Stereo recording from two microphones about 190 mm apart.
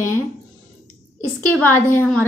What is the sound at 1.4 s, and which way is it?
Speech, 10° left (ahead or behind).